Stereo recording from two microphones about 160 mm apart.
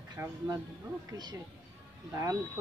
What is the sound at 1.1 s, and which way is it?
Speech, 25° right (ahead or behind).